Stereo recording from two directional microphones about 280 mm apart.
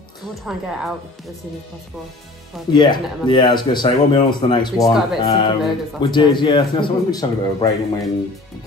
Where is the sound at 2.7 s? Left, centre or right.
Centre.